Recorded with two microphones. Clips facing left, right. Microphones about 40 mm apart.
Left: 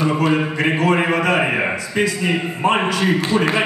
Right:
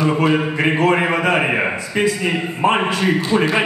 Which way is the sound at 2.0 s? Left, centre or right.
Centre.